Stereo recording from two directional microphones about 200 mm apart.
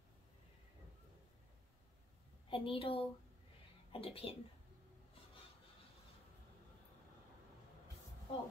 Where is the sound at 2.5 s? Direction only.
25° left (ahead or behind).